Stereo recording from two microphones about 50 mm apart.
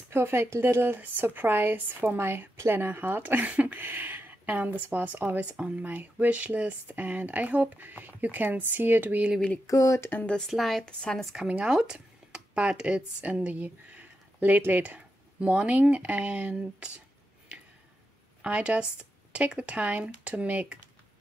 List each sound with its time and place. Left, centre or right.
0.1 s speech: right
9.7 s speech: left
10.5 s a woman's voice: centre
10.8 s speech: centre
11.4 s speech: right
15.4 s speech: right
18.4 s speech: right